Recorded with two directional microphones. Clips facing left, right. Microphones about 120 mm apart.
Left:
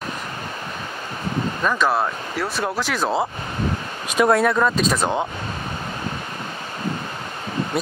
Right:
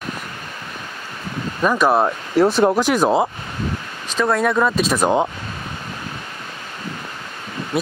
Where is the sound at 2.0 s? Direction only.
25° right (ahead or behind).